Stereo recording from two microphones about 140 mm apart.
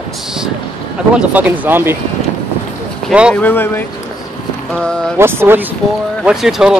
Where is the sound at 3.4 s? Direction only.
15° left (ahead or behind).